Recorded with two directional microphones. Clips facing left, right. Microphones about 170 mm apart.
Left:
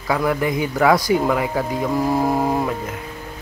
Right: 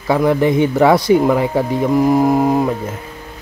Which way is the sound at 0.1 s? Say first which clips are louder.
Right 6 dB; 25° right (ahead or behind).